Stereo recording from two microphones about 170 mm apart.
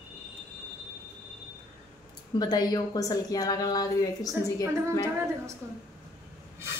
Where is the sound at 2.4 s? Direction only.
25° left (ahead or behind).